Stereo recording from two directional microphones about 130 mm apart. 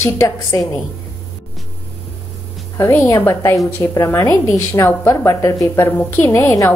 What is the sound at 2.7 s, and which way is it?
A woman's voice, 20° left (ahead or behind).